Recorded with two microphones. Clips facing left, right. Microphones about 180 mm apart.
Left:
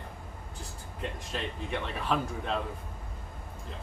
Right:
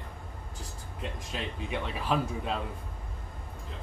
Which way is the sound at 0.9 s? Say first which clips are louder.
Left 1 dB; 5° right (ahead or behind).